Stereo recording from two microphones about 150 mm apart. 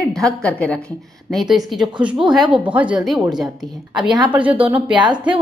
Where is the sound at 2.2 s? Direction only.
Centre (ahead or behind).